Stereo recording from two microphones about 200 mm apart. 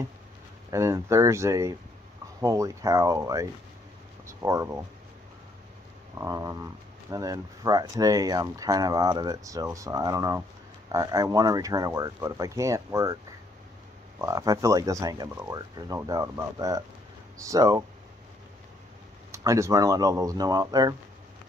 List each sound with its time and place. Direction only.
0.7 s speech: 15° right (ahead or behind)
6.1 s speech: 15° right (ahead or behind)
19.3 s speech: 15° right (ahead or behind)